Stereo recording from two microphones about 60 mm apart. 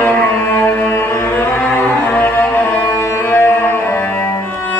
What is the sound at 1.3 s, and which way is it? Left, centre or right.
Music, left.